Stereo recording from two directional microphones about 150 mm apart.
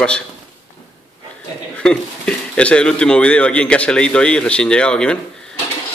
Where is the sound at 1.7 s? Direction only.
5° left (ahead or behind).